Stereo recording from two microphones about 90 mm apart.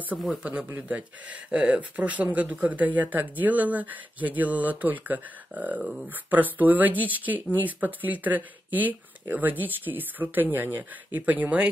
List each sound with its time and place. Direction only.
0.2 s speech: centre (ahead or behind)
0.7 s speech: 15° right (ahead or behind)